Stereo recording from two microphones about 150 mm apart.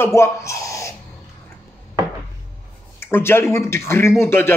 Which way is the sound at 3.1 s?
15° left (ahead or behind).